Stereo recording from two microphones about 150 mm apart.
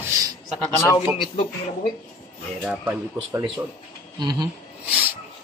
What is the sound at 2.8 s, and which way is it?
Speech, 20° right (ahead or behind).